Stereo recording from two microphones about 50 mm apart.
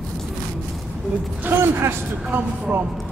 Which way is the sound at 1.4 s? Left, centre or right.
Right.